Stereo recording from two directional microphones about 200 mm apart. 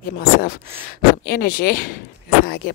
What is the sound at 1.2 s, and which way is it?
Speech, 50° left (ahead or behind).